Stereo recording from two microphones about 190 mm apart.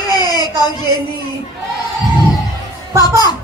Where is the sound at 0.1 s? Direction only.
20° left (ahead or behind).